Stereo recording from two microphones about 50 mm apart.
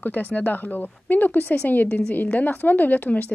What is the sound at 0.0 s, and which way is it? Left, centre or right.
A woman's voice, left.